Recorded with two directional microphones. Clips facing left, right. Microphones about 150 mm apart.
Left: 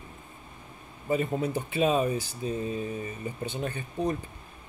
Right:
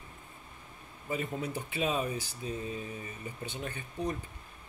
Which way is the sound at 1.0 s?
40° left (ahead or behind).